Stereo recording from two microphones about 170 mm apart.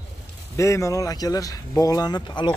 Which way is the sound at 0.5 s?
15° left (ahead or behind).